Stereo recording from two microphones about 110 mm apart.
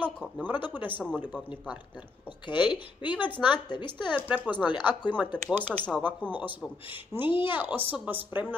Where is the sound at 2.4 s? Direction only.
45° left (ahead or behind).